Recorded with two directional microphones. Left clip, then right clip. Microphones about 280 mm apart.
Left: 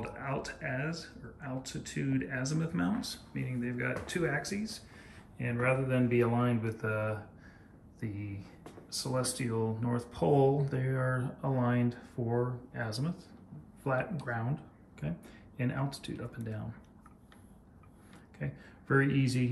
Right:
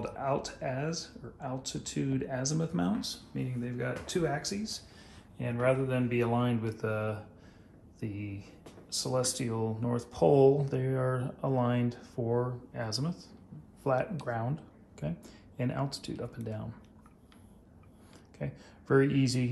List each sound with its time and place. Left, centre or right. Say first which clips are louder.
0.0 s speech: right 5 dB; centre
18.4 s speech: right 2 dB; centre